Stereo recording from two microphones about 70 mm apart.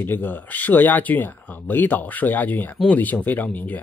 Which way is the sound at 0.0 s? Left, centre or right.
Left.